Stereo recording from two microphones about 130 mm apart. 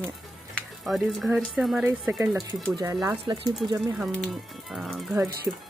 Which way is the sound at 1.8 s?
15° right (ahead or behind).